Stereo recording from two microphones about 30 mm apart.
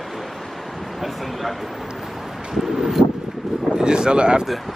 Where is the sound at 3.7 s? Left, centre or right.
Right.